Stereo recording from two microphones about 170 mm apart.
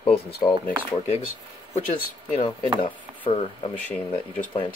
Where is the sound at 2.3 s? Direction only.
30° left (ahead or behind).